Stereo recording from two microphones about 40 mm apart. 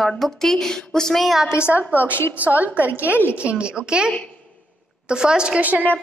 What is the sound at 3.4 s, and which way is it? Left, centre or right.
Speech, right.